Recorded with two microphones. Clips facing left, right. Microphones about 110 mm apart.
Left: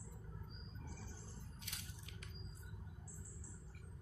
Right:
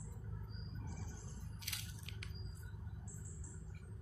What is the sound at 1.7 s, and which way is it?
Squish, 75° right (ahead or behind).